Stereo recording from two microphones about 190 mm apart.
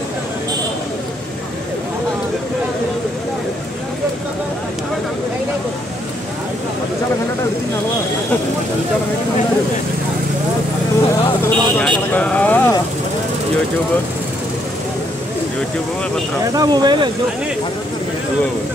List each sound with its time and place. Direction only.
11.4 s vehicle: 10° left (ahead or behind)
16.5 s speech: 20° right (ahead or behind)